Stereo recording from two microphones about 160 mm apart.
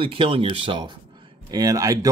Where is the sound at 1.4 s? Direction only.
25° right (ahead or behind).